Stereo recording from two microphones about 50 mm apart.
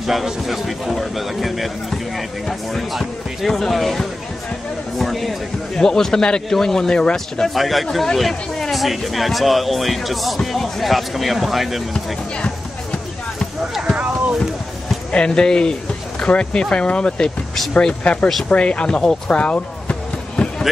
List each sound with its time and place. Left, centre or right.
0.0 s speech: centre
5.8 s speech: centre
7.4 s speech: centre
13.9 s clip-clop: right
15.0 s speech: centre